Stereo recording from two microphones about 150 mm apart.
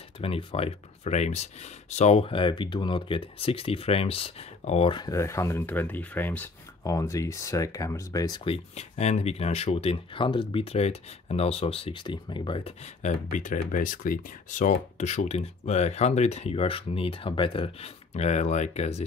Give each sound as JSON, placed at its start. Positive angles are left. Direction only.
{"t": 0.2, "sound": "speech", "side_deg": 40}
{"t": 8.5, "sound": "speech", "side_deg": 45}
{"t": 13.0, "sound": "speech", "side_deg": 60}